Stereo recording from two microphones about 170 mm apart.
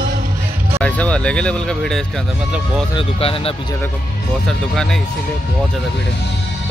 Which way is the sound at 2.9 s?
35° left (ahead or behind).